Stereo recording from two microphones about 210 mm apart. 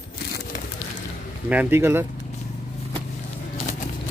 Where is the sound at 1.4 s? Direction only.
10° right (ahead or behind).